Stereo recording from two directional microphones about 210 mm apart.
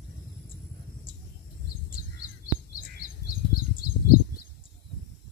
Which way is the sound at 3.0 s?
45° left (ahead or behind).